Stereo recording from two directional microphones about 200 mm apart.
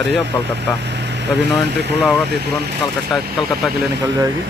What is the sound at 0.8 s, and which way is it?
Vehicle, 60° right (ahead or behind).